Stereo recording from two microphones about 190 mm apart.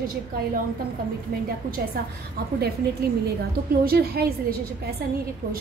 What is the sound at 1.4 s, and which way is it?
A woman's voice, 50° right (ahead or behind).